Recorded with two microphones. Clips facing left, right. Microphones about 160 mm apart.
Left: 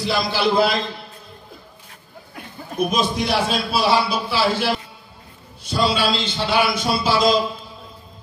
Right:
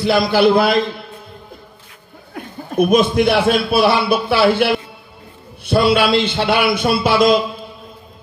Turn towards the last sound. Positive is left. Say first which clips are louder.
# right 4 dB
turn(degrees=-60)  # may be behind; listen again after turning